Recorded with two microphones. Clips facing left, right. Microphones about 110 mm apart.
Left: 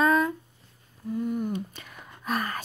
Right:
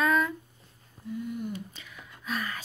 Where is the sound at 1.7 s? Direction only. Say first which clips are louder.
Left 3 dB; 50° left (ahead or behind).